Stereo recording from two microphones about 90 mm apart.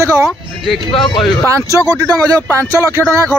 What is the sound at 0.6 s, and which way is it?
Speech, 5° left (ahead or behind).